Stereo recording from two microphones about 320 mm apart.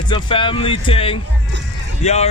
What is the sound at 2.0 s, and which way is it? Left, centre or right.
Speech, left.